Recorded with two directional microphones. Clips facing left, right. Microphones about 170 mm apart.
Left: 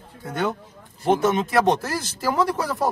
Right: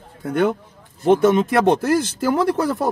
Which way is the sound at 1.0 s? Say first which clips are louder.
Right 5 dB; 55° right (ahead or behind).